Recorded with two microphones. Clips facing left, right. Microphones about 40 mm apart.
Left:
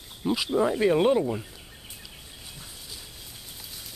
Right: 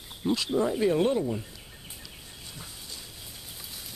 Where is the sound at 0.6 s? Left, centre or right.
Left.